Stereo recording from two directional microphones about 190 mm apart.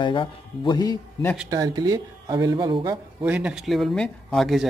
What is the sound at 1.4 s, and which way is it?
Speech, 20° right (ahead or behind).